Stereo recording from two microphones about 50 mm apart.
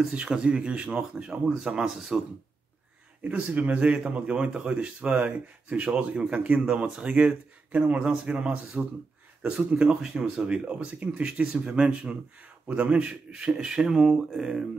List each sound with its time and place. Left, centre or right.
0.1 s speech: centre
1.9 s speech: centre
3.3 s speech: right
9.8 s speech: centre
13.5 s speech: centre